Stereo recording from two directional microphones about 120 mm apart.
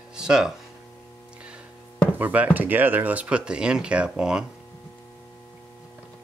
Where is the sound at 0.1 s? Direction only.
5° right (ahead or behind).